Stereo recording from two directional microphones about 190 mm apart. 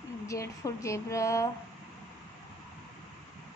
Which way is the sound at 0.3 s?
15° left (ahead or behind).